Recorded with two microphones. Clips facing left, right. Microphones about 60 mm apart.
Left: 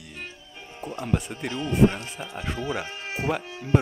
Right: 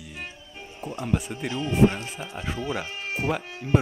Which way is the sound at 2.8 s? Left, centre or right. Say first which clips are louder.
Right 1 dB; left.